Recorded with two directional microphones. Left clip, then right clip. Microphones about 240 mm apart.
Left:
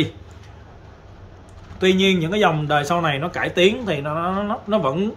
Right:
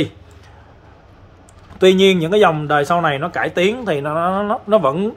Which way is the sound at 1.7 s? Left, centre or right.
Right.